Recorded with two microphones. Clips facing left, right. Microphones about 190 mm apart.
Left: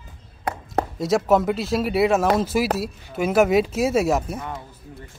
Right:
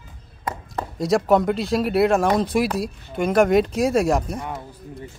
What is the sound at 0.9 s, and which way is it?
A man's voice, centre (ahead or behind).